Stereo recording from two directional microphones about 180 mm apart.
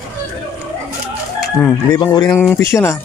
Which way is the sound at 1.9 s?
25° left (ahead or behind).